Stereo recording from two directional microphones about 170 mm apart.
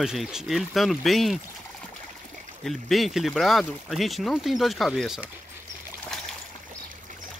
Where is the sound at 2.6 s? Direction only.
Centre (ahead or behind).